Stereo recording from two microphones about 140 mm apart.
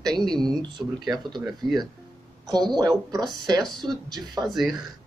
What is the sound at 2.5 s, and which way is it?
Speech, 30° right (ahead or behind).